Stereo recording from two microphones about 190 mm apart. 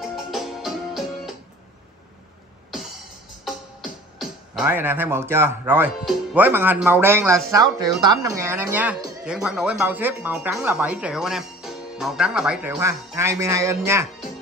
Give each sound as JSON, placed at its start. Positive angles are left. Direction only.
{"t": 0.0, "sound": "music", "side_deg": 0}
{"t": 4.2, "sound": "speech", "side_deg": -5}
{"t": 12.7, "sound": "speech", "side_deg": -15}